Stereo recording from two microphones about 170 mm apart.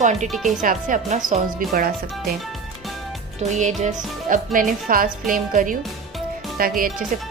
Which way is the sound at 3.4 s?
45° right (ahead or behind).